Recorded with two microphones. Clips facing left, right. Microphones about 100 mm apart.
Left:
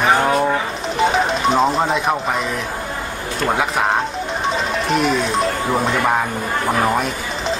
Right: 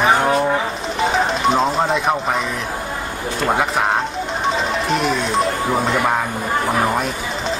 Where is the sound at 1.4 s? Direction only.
Centre (ahead or behind).